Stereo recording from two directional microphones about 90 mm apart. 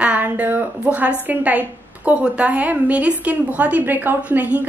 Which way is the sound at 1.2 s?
20° right (ahead or behind).